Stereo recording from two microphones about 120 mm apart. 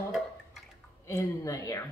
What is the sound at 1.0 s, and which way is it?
Speech, 25° left (ahead or behind).